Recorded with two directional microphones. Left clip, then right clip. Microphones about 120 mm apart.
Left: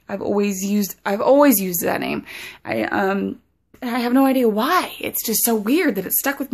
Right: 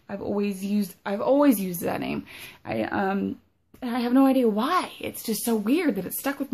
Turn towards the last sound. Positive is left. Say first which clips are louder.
# left 6 dB
turn(degrees=25)  # may be behind; listen again after turning